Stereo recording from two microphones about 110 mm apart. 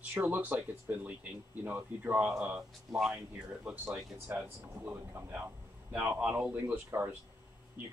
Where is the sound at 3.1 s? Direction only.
15° right (ahead or behind).